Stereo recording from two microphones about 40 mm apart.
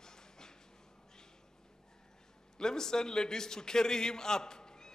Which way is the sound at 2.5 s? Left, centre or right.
Centre.